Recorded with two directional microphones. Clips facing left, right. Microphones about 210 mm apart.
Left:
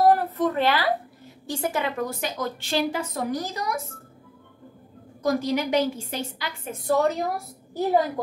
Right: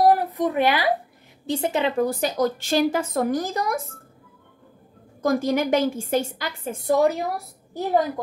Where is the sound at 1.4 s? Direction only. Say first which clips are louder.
Right 4 dB; 20° right (ahead or behind); by 3.8 s 50° right (ahead or behind).